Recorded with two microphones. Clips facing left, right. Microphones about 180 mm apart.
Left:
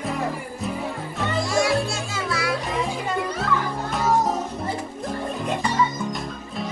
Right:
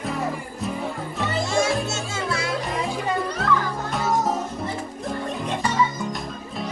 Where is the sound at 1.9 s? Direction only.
25° right (ahead or behind).